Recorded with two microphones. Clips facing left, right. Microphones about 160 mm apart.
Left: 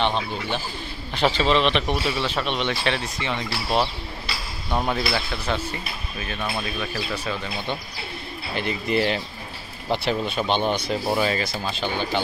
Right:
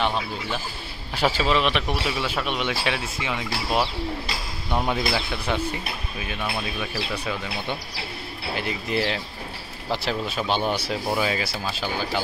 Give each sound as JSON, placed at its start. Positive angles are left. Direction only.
{"t": 0.0, "sound": "a man's voice", "side_deg": -5}